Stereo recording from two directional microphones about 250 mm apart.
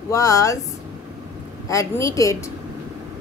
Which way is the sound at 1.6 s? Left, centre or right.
Centre.